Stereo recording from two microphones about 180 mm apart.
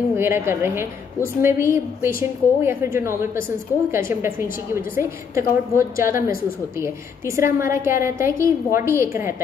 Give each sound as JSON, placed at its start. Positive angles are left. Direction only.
{"t": 0.1, "sound": "a woman's voice", "side_deg": -15}